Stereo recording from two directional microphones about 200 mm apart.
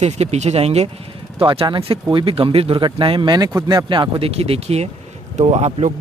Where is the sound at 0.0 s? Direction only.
35° right (ahead or behind).